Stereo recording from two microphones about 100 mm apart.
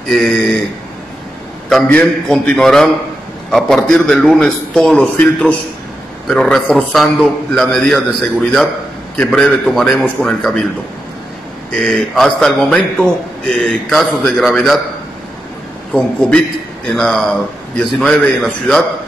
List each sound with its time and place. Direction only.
0.1 s a man's voice: centre (ahead or behind)
1.7 s a man's voice: 10° left (ahead or behind)
6.2 s a man's voice: 5° left (ahead or behind)
11.7 s a man's voice: 5° left (ahead or behind)
15.9 s a man's voice: 10° left (ahead or behind)